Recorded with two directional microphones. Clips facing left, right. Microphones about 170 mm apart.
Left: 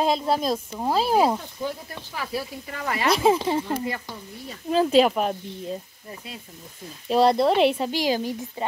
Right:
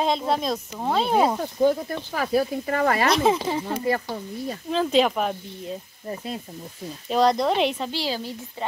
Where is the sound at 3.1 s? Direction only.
5° left (ahead or behind).